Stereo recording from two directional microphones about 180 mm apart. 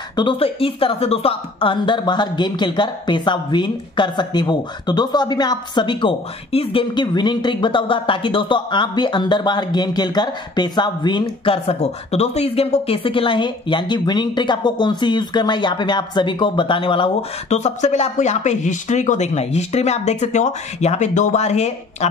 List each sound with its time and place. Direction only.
0.1 s speech: 25° left (ahead or behind)